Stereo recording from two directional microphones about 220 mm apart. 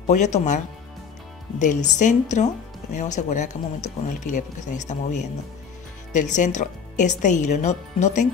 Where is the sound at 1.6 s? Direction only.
35° left (ahead or behind).